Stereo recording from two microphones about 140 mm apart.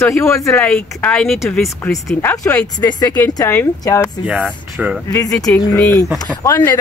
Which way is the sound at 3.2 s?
20° left (ahead or behind).